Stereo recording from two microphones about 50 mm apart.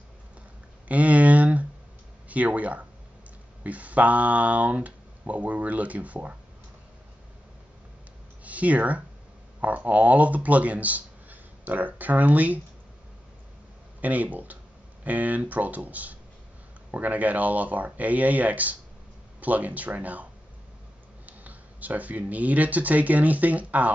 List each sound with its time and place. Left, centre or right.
0.8 s a sound: right
2.2 s speech: right
8.5 s speech: right
14.0 s speech: right
21.3 s speech: right